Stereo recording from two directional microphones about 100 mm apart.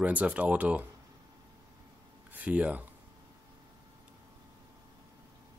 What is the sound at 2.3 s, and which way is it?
Speech, 15° right (ahead or behind).